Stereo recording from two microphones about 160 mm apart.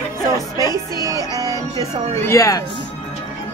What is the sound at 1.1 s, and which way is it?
Music, 25° right (ahead or behind).